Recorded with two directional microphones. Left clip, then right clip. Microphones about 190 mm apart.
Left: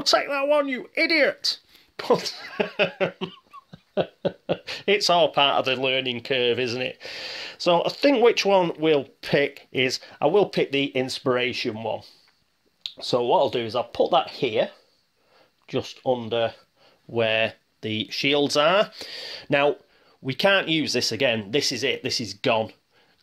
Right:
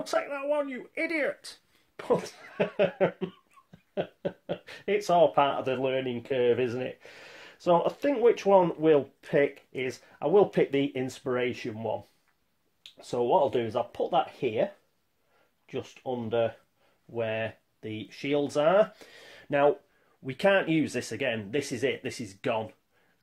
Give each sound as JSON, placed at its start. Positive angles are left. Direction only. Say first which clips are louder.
{"t": 0.0, "sound": "speech", "louder": "left 9 dB", "side_deg": 30}
{"t": 20.2, "sound": "speech", "louder": "left 4 dB", "side_deg": 20}